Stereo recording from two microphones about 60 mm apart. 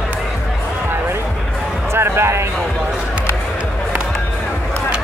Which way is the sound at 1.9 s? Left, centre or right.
Right.